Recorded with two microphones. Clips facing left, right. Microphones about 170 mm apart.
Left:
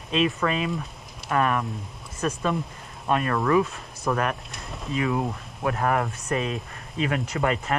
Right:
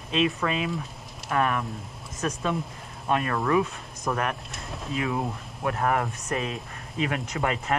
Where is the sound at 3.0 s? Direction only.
Centre (ahead or behind).